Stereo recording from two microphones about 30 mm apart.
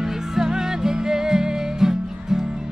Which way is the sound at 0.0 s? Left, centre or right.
Centre.